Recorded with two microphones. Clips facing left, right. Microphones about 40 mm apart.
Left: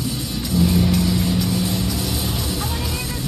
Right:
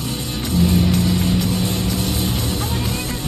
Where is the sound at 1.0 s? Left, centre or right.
Right.